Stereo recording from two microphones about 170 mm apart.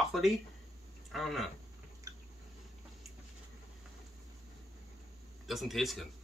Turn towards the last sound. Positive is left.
turn(degrees=0)  # may be behind; listen again after turning